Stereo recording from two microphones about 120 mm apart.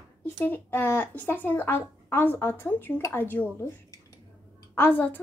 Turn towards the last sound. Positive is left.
turn(degrees=15)  # may be behind; listen again after turning